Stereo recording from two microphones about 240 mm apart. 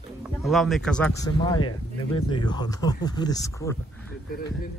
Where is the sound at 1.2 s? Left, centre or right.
Centre.